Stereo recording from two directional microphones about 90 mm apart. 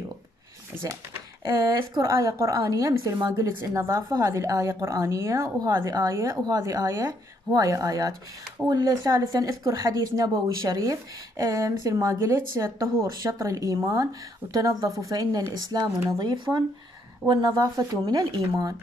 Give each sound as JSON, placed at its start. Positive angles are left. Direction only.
{"t": 1.4, "sound": "speech", "side_deg": -35}